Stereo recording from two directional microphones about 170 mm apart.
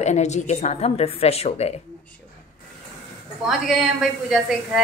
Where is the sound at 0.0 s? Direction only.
40° left (ahead or behind).